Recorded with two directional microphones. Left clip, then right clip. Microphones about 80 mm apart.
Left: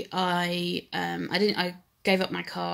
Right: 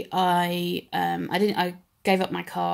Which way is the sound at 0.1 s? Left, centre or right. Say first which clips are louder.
Right 5 dB; centre.